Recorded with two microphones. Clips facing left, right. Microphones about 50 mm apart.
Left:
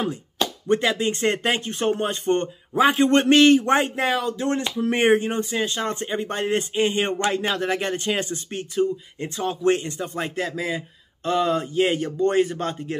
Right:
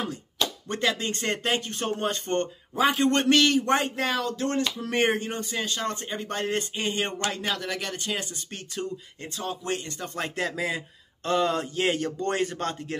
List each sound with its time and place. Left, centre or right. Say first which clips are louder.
0.0 s a man's voice: left 4 dB; left
2.7 s a man's voice: left 5 dB; left
9.9 s a man's voice: left 4 dB; centre